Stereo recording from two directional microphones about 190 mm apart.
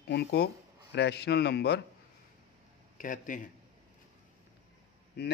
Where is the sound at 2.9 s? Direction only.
45° left (ahead or behind).